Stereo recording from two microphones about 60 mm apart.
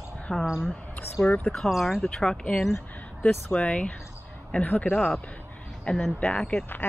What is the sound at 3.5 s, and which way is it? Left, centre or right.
Speech, centre.